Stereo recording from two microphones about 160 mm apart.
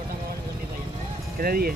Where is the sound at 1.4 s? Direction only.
65° right (ahead or behind).